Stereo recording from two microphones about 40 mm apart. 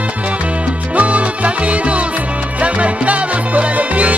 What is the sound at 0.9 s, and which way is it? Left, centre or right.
Music, right.